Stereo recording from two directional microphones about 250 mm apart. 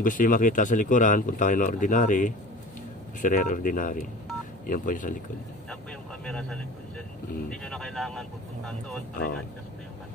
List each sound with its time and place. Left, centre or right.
0.0 s speech: left
6.2 s speech: centre